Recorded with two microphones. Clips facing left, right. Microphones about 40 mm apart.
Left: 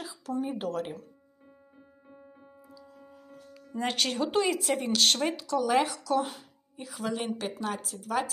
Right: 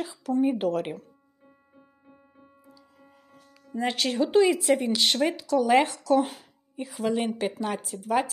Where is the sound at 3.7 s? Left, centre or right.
Centre.